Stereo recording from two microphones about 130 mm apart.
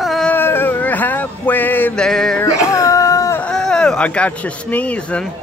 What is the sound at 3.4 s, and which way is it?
Speech, 5° left (ahead or behind).